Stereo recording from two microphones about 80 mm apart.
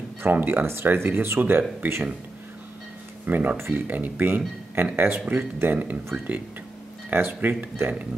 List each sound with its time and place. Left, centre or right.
0.2 s speech: right
3.3 s speech: right